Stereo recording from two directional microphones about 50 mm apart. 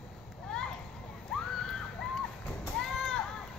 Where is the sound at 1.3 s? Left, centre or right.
Centre.